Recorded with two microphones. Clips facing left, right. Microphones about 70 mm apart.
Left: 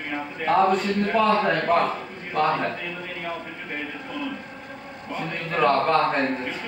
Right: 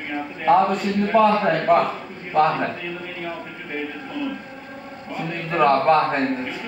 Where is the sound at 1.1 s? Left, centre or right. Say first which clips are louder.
Right 4 dB; right.